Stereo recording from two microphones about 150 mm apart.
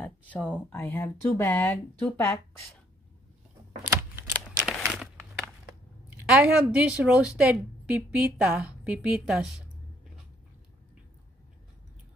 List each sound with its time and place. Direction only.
0.4 s speech: 5° right (ahead or behind)
0.7 s speech: 15° left (ahead or behind)
3.9 s a sound: 15° right (ahead or behind)
4.5 s crumpling: 5° right (ahead or behind)
6.3 s a woman's voice: 5° right (ahead or behind)